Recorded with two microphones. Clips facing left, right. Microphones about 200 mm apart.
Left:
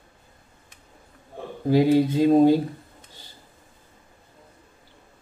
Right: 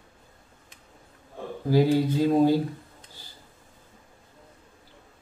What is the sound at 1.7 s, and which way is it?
Speech, 20° left (ahead or behind).